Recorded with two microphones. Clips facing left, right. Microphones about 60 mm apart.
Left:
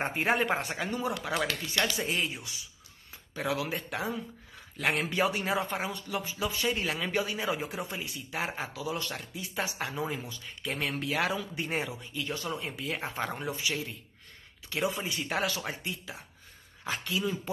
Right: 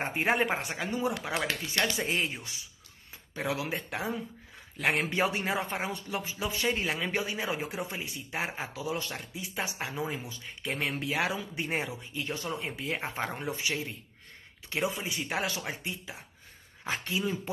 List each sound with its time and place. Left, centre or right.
0.3 s speech: centre
0.9 s speech: right
15.3 s speech: centre